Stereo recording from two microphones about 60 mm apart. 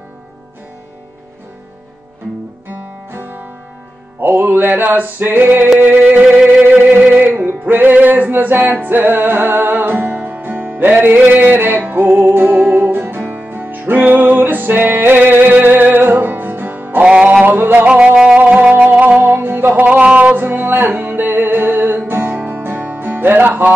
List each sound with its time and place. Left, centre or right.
2.7 s music: right
17.0 s music: centre
17.5 s music: right
17.8 s music: centre; by 19.7 s right
19.7 s music: right
20.4 s music: right